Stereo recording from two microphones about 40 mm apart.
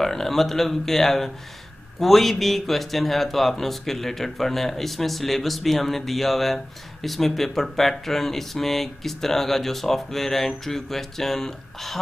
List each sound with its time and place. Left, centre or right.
0.0 s speech: centre